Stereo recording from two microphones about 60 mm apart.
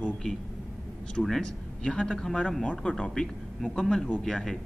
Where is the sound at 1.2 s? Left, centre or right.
Centre.